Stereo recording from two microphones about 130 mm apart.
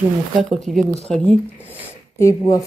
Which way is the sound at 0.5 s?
Centre (ahead or behind).